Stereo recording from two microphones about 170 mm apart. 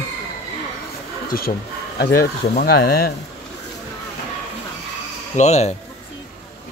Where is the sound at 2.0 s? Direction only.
70° left (ahead or behind).